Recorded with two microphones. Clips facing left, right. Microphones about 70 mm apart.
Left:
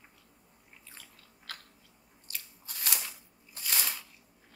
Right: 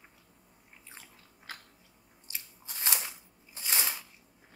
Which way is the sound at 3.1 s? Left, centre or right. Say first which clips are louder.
Right 1 dB; right.